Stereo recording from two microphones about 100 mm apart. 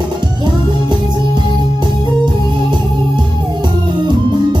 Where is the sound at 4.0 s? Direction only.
50° right (ahead or behind).